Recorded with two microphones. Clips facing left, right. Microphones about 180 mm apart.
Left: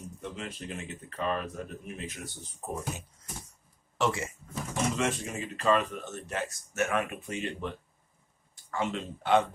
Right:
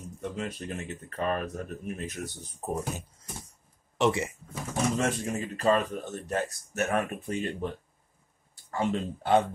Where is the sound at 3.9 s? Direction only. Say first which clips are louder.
Right 4 dB; 20° right (ahead or behind).